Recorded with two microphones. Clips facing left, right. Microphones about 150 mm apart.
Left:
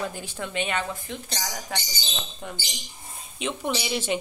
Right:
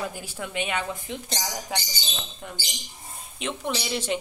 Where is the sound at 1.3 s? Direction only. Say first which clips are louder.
Right 2 dB; 25° right (ahead or behind).